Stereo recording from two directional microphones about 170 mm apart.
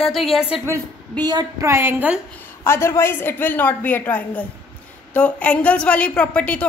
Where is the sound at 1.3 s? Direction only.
20° right (ahead or behind).